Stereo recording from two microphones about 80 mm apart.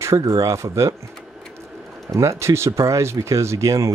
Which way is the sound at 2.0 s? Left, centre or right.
Right.